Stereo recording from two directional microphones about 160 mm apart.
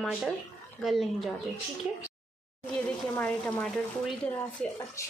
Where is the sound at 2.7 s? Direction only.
5° left (ahead or behind).